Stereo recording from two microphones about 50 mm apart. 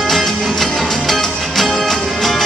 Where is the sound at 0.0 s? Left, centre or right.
Centre.